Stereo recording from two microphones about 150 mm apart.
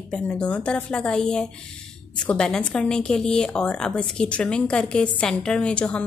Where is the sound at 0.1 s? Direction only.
5° left (ahead or behind).